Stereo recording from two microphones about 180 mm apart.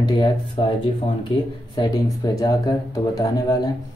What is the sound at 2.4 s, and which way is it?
Speech, 20° left (ahead or behind).